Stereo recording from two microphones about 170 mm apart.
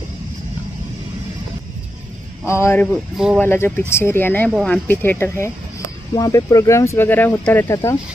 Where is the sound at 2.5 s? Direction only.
15° left (ahead or behind).